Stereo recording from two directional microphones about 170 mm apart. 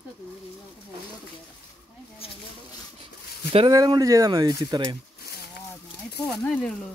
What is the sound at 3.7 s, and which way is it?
Speech, 20° right (ahead or behind).